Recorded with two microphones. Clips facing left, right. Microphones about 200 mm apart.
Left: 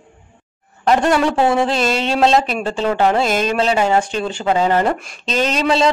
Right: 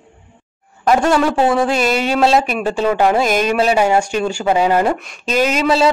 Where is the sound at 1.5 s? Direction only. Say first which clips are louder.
Right 1 dB; 25° left (ahead or behind).